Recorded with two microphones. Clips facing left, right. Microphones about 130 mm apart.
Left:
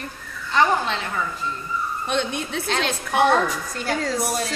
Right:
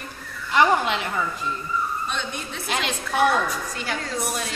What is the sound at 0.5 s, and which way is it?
Speech, 15° right (ahead or behind).